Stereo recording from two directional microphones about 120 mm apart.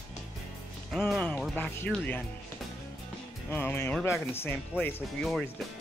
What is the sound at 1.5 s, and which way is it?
Speech, 15° left (ahead or behind).